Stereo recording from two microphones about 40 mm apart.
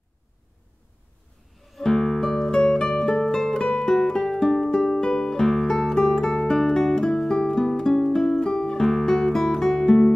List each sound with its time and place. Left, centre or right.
1.8 s music: centre
9.0 s guitar: centre